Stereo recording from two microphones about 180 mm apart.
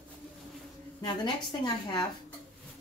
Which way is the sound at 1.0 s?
20° left (ahead or behind).